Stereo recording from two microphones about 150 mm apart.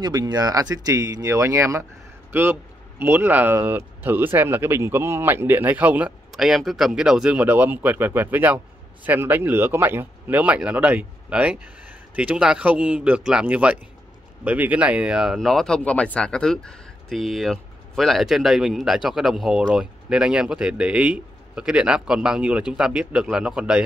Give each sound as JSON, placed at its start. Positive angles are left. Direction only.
{"t": 0.0, "sound": "speech", "side_deg": -25}